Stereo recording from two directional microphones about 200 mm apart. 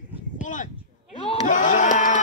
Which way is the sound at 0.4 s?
40° left (ahead or behind).